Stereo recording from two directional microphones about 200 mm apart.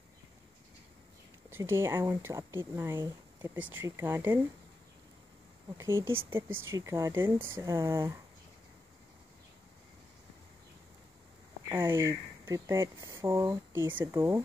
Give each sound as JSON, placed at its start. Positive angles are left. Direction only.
{"t": 1.5, "sound": "speech", "side_deg": -10}
{"t": 5.8, "sound": "speech", "side_deg": -15}
{"t": 11.7, "sound": "speech", "side_deg": -10}